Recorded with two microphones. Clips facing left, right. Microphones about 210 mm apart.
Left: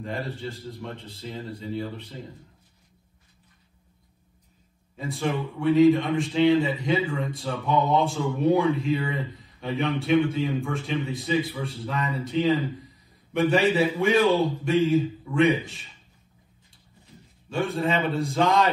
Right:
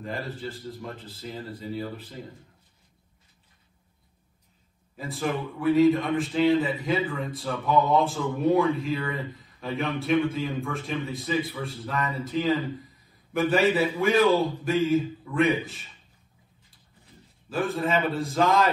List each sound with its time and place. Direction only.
0.0 s a man's voice: centre (ahead or behind)
4.9 s a man's voice: centre (ahead or behind)
17.5 s a man's voice: centre (ahead or behind)